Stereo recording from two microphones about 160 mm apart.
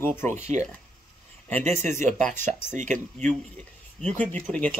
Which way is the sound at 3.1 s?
5° left (ahead or behind).